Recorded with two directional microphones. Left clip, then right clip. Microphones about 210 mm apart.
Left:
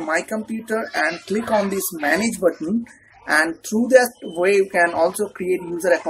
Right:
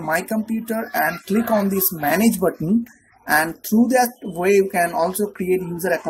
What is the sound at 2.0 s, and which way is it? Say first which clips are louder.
Speech: even; 35° right (ahead or behind).